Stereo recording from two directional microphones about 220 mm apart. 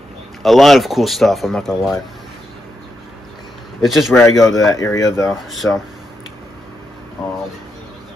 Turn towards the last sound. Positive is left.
turn(degrees=0)  # may be behind; listen again after turning